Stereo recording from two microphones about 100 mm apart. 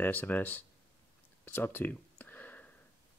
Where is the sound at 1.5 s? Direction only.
20° left (ahead or behind).